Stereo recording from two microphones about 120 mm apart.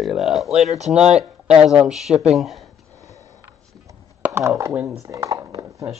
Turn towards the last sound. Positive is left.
turn(degrees=-30)  # may be behind; listen again after turning